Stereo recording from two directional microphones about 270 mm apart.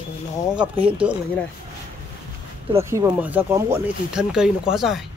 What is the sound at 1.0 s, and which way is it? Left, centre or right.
Speech, centre.